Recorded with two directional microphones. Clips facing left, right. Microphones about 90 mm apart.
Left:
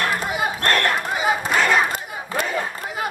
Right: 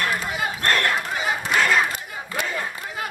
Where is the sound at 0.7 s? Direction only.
10° left (ahead or behind).